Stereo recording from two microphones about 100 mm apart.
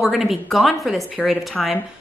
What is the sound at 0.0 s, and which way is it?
A woman's voice, 5° right (ahead or behind).